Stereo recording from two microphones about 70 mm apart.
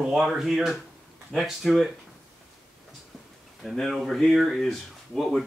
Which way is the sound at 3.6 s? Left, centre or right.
Centre.